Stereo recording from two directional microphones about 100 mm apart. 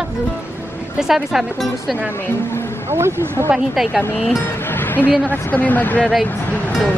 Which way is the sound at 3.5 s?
5° right (ahead or behind).